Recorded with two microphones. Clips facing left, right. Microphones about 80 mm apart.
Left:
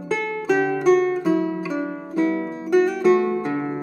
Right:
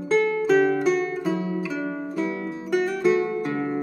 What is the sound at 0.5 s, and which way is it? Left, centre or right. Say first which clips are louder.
Music: right 1 dB; centre.